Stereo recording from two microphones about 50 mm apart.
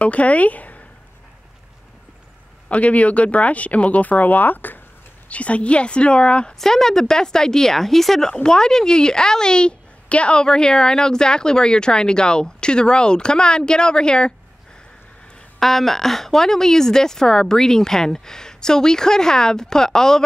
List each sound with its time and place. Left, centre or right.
0.0 s speech: left
2.7 s speech: left
5.3 s speech: left
6.6 s a woman's voice: centre
15.6 s a woman's voice: centre